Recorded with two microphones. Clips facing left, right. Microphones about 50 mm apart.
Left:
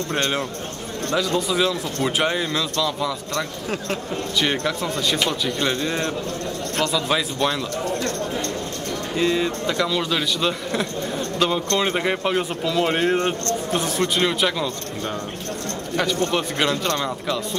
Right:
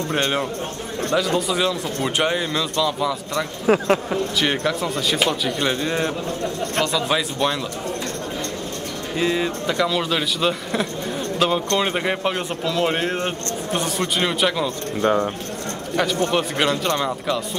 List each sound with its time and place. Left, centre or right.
0.1 s speech: centre
3.8 s speech: right
4.4 s speech: centre
9.1 s speech: centre
15.0 s speech: right
16.0 s speech: centre